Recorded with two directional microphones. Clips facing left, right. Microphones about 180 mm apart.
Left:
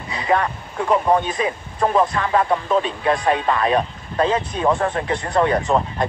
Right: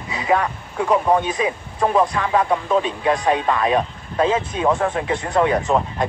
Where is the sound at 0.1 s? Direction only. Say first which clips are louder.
Even; 5° right (ahead or behind).